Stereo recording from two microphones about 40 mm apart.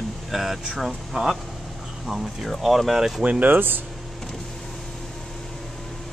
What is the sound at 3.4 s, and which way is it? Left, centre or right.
Speech, right.